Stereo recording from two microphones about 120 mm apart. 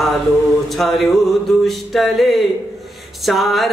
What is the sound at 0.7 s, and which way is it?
Music, centre (ahead or behind).